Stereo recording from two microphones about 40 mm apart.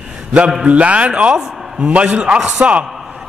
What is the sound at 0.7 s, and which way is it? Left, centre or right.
A man's voice, right.